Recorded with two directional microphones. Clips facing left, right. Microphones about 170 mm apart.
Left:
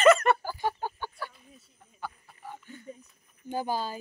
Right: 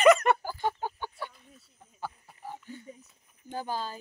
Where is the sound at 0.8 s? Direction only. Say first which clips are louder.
Even; 20° right (ahead or behind).